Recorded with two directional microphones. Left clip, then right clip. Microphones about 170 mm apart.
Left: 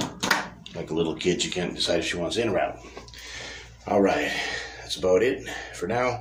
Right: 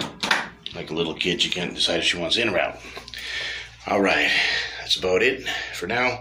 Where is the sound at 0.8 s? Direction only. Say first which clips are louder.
Right 1 dB; 10° left (ahead or behind).